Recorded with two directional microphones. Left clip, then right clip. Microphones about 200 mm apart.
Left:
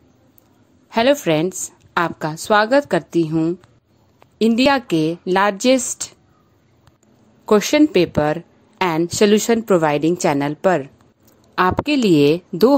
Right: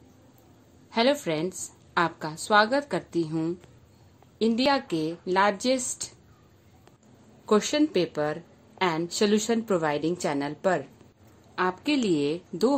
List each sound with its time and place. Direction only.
0.8 s a woman's voice: 35° left (ahead or behind)
7.4 s a woman's voice: 40° left (ahead or behind)